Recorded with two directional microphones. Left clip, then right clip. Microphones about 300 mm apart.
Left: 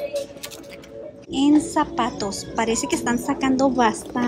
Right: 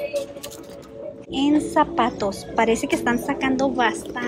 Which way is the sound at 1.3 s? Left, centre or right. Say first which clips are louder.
Left 2 dB; centre.